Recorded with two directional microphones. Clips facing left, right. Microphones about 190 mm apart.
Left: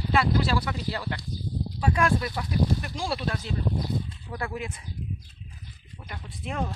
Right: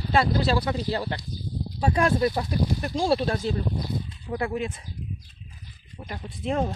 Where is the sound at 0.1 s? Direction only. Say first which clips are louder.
Right 2 dB; 35° right (ahead or behind).